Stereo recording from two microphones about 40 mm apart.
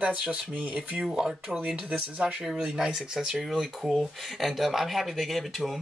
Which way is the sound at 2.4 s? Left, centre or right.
Centre.